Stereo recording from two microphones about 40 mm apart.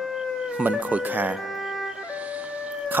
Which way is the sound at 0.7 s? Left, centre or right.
Right.